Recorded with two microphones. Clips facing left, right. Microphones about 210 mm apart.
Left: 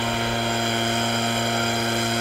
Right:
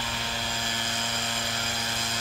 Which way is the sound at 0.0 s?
60° left (ahead or behind).